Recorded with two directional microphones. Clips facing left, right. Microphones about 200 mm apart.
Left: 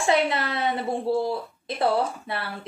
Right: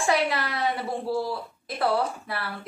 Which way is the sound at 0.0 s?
25° left (ahead or behind).